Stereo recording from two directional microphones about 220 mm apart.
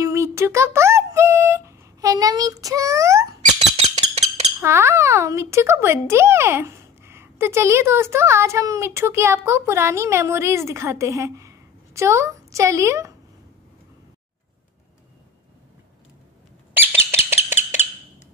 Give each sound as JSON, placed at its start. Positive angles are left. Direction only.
{"t": 0.0, "sound": "speech", "side_deg": -15}
{"t": 3.7, "sound": "a sound", "side_deg": -30}
{"t": 4.6, "sound": "speech", "side_deg": -10}
{"t": 16.7, "sound": "squawk", "side_deg": -10}